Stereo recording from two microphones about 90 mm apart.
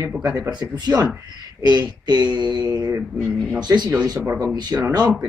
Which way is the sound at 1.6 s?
50° right (ahead or behind).